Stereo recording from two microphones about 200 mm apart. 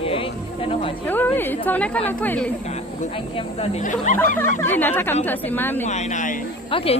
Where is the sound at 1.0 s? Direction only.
10° left (ahead or behind).